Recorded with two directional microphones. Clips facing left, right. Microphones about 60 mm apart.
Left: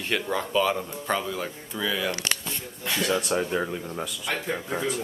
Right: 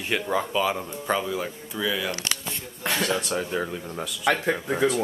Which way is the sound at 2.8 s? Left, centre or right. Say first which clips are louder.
Right 2 dB; right.